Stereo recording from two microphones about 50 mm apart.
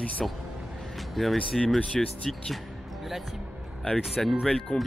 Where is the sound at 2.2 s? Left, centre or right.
Centre.